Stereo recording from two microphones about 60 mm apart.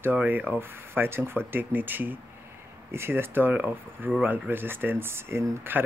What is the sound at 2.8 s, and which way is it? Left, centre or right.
Speech, right.